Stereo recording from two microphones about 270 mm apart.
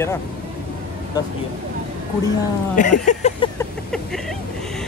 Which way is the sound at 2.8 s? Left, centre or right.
Left.